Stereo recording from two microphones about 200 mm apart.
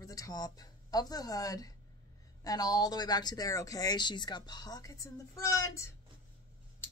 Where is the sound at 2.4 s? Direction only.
20° left (ahead or behind).